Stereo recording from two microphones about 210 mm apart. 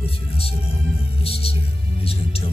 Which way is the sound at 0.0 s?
25° left (ahead or behind).